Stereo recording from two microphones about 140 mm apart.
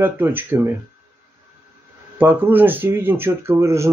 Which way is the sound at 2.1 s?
15° right (ahead or behind).